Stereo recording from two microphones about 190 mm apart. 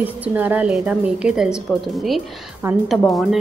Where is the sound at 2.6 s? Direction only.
15° right (ahead or behind).